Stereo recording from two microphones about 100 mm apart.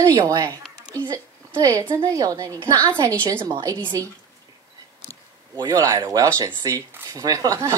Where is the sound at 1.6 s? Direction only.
35° right (ahead or behind).